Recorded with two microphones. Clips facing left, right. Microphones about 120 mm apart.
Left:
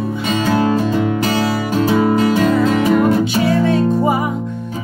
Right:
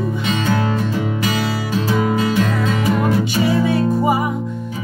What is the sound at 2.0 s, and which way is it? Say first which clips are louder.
Music: left 4 dB; 40° left (ahead or behind).